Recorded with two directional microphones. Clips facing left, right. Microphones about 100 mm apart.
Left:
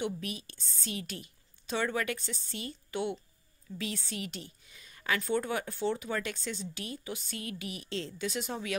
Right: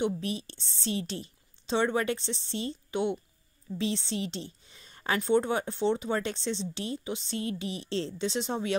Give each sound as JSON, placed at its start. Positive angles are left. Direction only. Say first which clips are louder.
{"t": 0.0, "sound": "a woman's voice", "louder": "right 5 dB", "side_deg": -30}